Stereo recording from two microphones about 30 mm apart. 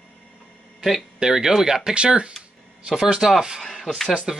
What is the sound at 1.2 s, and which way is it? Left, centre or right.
Speech, centre.